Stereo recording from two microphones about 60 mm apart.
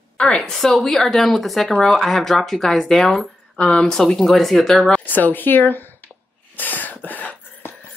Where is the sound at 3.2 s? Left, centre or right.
Left.